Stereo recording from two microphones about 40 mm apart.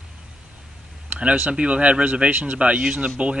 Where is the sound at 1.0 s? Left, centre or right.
Right.